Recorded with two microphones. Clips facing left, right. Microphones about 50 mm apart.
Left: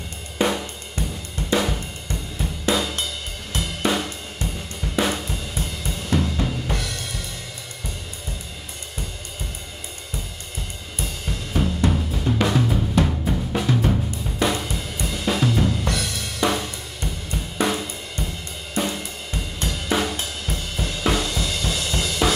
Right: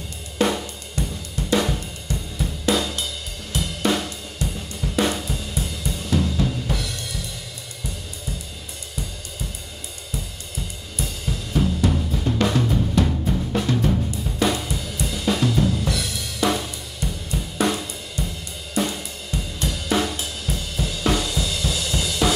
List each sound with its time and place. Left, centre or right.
0.4 s cymbal: centre
1.5 s drum kit: centre
2.3 s cymbal: centre
4.4 s cymbal: left
4.8 s drum kit: centre
5.6 s cymbal: centre
11.0 s drum kit: centre
16.3 s cymbal: centre
19.7 s drum kit: centre